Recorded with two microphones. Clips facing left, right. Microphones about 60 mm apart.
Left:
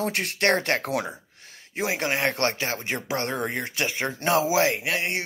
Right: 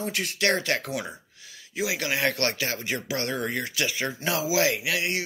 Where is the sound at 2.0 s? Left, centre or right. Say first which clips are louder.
Left 2 dB; left.